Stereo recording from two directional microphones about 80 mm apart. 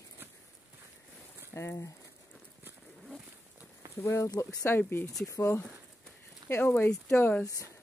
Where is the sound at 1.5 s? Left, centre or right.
Left.